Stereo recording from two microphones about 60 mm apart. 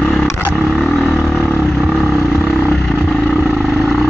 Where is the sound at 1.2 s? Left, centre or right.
Centre.